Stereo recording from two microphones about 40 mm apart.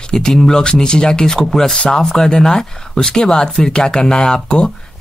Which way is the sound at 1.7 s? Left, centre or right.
Left.